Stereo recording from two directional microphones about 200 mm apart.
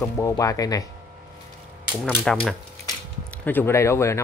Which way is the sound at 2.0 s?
5° left (ahead or behind).